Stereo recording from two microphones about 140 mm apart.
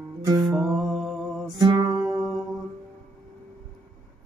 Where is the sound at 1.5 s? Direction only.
35° right (ahead or behind).